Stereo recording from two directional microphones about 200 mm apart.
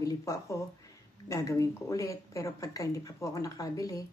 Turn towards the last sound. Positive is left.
turn(degrees=15)  # may be behind; listen again after turning